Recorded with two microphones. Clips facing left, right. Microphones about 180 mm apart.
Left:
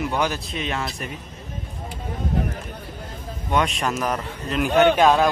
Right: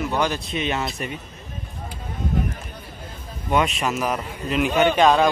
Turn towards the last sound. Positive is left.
turn(degrees=0)  # may be behind; listen again after turning